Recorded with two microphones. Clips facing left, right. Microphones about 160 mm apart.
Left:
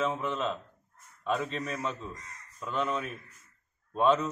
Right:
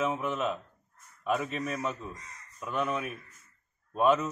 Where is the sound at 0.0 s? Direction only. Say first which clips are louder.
Right 1 dB; 10° right (ahead or behind).